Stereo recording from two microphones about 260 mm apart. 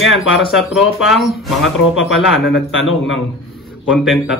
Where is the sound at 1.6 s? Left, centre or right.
Left.